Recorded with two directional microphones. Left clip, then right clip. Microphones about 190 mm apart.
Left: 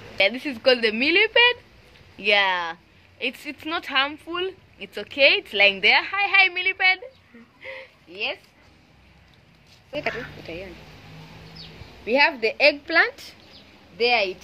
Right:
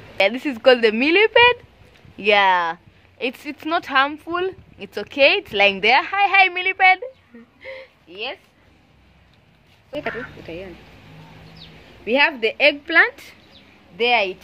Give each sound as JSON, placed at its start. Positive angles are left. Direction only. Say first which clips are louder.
{"t": 0.2, "sound": "a woman's voice", "louder": "right 4 dB", "side_deg": -55}
{"t": 7.6, "sound": "a sound", "louder": "right 2 dB", "side_deg": -25}
{"t": 9.8, "sound": "speech", "louder": "right 1 dB", "side_deg": -45}
{"t": 12.1, "sound": "speech", "louder": "right 2 dB", "side_deg": -45}
{"t": 13.9, "sound": "a woman's voice", "louder": "right 3 dB", "side_deg": -55}